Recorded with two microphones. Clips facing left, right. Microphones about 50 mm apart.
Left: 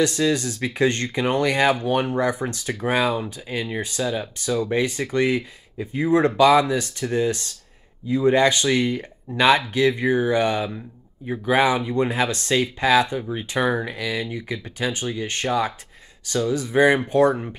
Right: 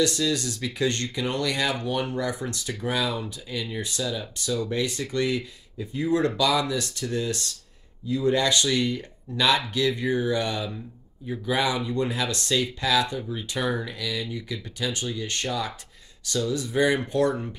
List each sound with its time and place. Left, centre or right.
0.0 s speech: left